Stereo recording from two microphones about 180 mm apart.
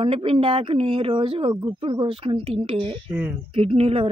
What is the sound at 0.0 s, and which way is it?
A woman's voice, 30° right (ahead or behind).